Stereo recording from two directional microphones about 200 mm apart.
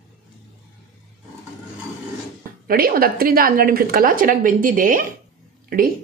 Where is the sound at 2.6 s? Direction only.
45° right (ahead or behind).